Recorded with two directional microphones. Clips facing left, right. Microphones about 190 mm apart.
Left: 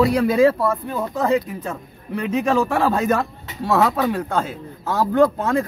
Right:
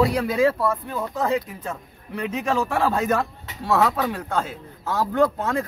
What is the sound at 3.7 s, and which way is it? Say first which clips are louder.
Speech: left 3 dB; 35° left (ahead or behind).